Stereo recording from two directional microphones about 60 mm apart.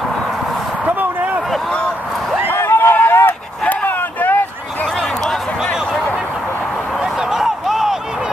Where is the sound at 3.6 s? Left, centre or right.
Left.